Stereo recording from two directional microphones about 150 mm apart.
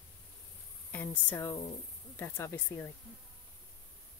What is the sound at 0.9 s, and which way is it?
A woman's voice, 10° left (ahead or behind).